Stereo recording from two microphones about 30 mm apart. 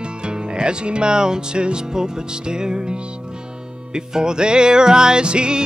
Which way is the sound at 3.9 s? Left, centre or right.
Right.